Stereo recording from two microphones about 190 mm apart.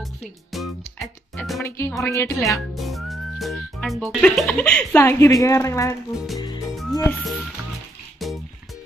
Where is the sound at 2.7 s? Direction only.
Centre (ahead or behind).